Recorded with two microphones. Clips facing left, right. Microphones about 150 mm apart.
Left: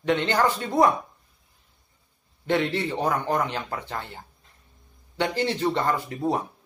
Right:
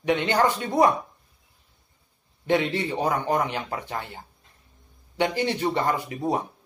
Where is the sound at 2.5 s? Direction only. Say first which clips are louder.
Right 1 dB; 15° right (ahead or behind).